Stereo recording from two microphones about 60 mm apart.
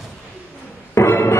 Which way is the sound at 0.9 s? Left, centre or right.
Left.